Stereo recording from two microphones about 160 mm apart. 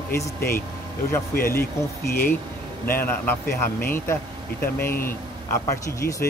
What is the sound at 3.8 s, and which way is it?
Speech, 15° left (ahead or behind).